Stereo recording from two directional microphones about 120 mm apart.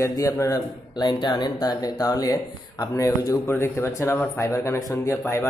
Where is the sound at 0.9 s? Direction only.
40° left (ahead or behind); by 5.5 s 20° left (ahead or behind).